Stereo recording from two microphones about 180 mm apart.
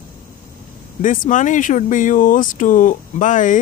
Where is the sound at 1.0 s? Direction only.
45° left (ahead or behind).